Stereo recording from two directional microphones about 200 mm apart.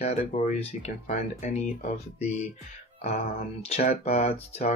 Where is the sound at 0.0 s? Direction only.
35° left (ahead or behind).